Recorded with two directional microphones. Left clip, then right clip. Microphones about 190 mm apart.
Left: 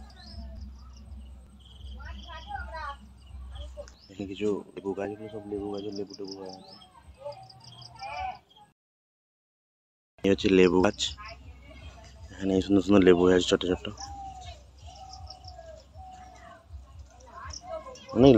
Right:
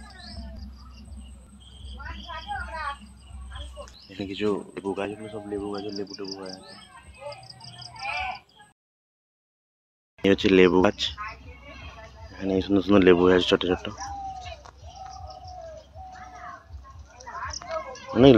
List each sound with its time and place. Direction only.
2.0 s a sound: 25° right (ahead or behind)
3.8 s speech: 10° right (ahead or behind)
7.2 s bird: 15° left (ahead or behind)
10.2 s speech: 5° left (ahead or behind)
12.0 s speech: 25° left (ahead or behind)
17.2 s a sound: 55° left (ahead or behind)